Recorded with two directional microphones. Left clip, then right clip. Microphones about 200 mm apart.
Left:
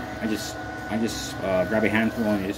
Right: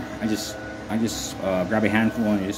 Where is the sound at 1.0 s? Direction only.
70° right (ahead or behind).